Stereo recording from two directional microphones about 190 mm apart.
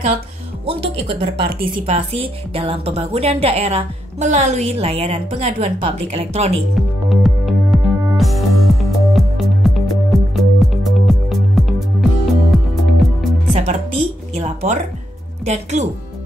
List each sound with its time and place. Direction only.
0.7 s a woman's voice: 30° right (ahead or behind)
6.7 s music: centre (ahead or behind)
13.5 s music: 40° right (ahead or behind)
14.3 s a sound: 35° right (ahead or behind)
15.4 s speech: 35° right (ahead or behind)